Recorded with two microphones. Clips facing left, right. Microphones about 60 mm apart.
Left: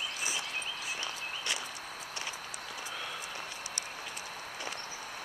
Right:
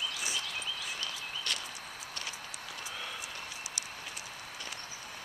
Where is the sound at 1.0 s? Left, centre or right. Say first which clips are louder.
Left 1 dB; centre.